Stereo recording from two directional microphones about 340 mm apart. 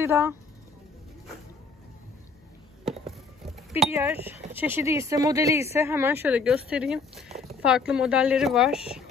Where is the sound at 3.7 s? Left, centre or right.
Centre.